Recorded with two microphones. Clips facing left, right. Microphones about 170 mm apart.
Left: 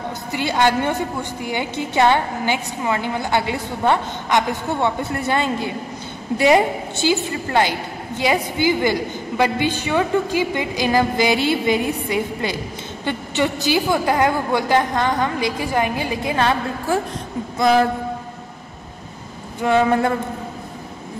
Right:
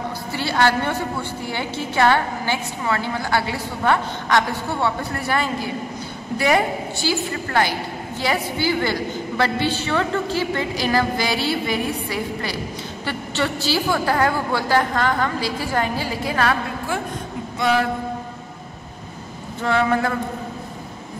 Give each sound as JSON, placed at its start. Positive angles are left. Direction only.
{"t": 0.3, "sound": "a woman's voice", "side_deg": 15}
{"t": 19.6, "sound": "a woman's voice", "side_deg": 20}